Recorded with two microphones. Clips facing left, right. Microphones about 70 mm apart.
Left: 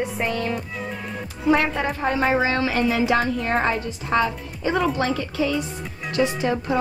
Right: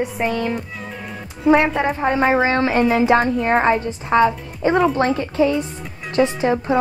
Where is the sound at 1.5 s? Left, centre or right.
Right.